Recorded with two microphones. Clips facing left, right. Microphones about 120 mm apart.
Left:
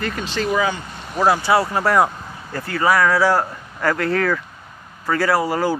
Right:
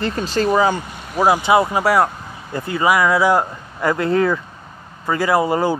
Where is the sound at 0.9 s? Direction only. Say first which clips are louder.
Right 2 dB; 5° right (ahead or behind).